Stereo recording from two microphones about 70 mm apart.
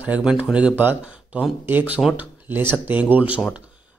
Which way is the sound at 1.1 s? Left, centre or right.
Centre.